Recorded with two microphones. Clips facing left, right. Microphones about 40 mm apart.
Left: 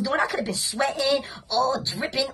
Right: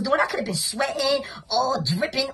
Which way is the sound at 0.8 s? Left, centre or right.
Left.